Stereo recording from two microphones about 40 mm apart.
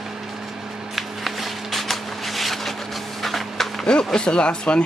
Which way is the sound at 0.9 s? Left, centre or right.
Centre.